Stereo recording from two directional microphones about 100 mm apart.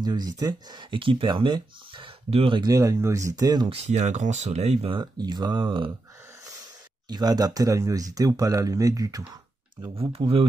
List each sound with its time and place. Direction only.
0.0 s speech: 45° right (ahead or behind); by 2.6 s 60° right (ahead or behind)
2.6 s speech: 35° right (ahead or behind)
4.5 s speech: 90° right
4.9 s speech: 45° right (ahead or behind)
7.1 s speech: 45° right (ahead or behind)
9.9 s speech: 70° right (ahead or behind)